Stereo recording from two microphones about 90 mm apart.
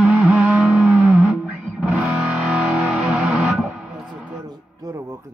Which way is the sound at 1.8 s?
15° right (ahead or behind).